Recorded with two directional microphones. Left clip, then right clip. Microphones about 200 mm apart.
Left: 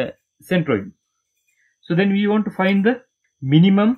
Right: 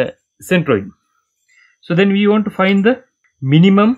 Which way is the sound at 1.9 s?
30° right (ahead or behind).